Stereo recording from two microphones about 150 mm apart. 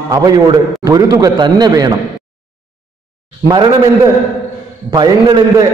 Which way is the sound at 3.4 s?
25° right (ahead or behind).